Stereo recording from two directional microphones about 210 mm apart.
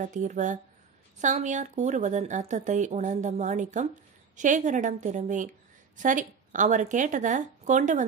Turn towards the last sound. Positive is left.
turn(degrees=-35)  # may be behind; listen again after turning